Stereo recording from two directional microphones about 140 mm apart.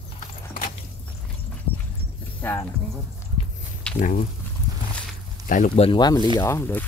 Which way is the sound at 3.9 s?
5° left (ahead or behind).